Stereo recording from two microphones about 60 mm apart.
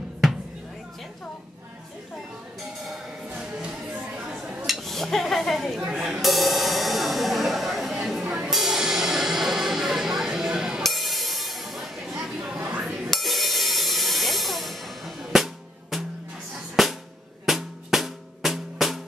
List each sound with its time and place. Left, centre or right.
2.8 s a sound: centre
3.9 s a sound: centre
4.8 s speech: centre
5.9 s speech: centre
6.2 s music: centre
12.2 s a sound: centre
12.5 s chink: right
13.1 s music: centre
16.8 s drum: centre